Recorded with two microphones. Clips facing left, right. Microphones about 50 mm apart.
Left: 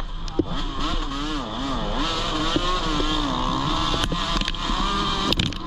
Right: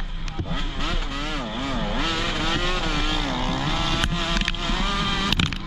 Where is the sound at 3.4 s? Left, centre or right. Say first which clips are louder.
Left 2 dB; right.